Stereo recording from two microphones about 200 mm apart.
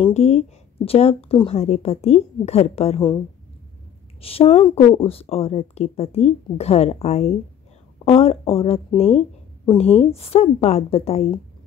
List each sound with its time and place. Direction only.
0.1 s speech: 35° left (ahead or behind)
4.2 s speech: 30° left (ahead or behind)
9.8 s a woman's voice: 5° left (ahead or behind)
10.1 s speech: 30° left (ahead or behind)